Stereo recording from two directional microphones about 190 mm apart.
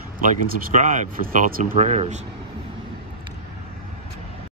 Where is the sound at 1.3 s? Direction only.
45° right (ahead or behind).